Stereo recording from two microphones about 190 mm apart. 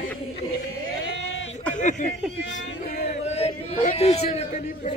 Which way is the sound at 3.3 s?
35° left (ahead or behind).